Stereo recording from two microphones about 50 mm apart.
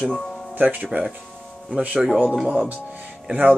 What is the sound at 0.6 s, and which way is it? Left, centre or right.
Speech, right.